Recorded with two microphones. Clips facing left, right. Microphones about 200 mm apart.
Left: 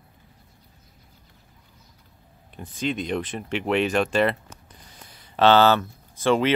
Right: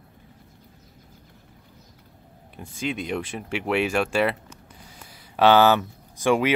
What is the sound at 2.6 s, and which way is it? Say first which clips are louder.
Speech: left 2 dB; 10° right (ahead or behind).